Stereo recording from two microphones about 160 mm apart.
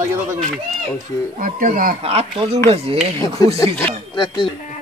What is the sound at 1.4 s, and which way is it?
Speech, 55° right (ahead or behind).